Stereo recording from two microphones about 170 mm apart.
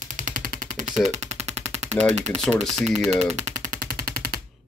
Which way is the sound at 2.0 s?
45° right (ahead or behind).